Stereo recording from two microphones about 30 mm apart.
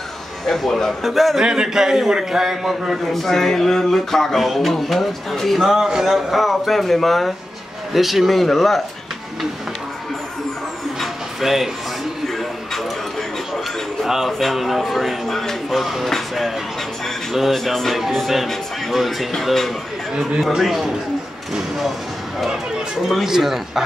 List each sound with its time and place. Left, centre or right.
0.5 s speech: centre
1.4 s a man's voice: right
3.1 s speech: centre
5.6 s a man's voice: centre
6.3 s speech: centre
11.4 s a man's voice: centre
14.0 s music: centre
14.4 s speech: centre
15.2 s music: centre
15.7 s speech: centre
16.1 s music: centre
17.3 s speech: centre
21.5 s speech: centre
23.2 s a man's voice: centre